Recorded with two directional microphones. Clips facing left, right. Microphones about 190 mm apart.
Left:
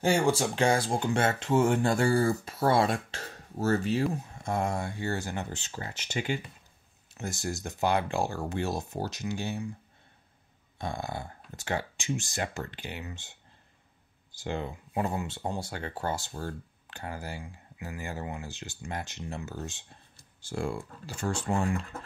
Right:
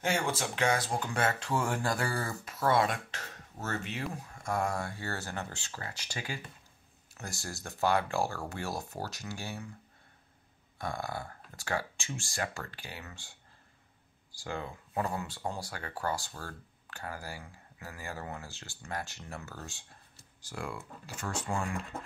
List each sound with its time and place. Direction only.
0.0 s speech: 30° left (ahead or behind)
4.1 s speech: 25° left (ahead or behind)
10.8 s speech: 20° left (ahead or behind)